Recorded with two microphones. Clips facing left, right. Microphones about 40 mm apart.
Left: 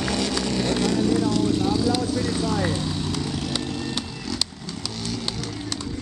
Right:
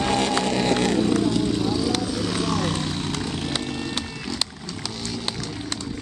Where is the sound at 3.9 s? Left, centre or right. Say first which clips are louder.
Even; right.